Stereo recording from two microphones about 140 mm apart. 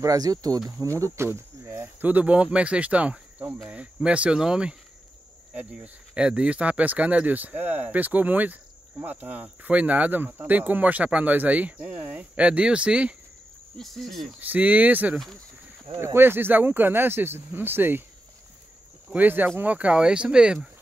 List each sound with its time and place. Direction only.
0.0 s speech: 25° right (ahead or behind); by 14.2 s centre (ahead or behind)
14.4 s speech: 10° right (ahead or behind)
19.1 s speech: 15° right (ahead or behind)